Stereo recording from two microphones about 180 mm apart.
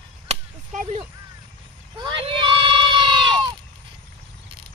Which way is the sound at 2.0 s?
30° right (ahead or behind).